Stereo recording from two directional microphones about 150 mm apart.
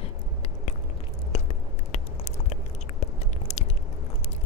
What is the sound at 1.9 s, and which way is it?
Biting, 50° left (ahead or behind).